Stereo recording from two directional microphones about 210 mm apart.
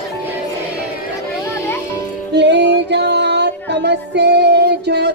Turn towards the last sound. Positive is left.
turn(degrees=-50)  # may be behind; listen again after turning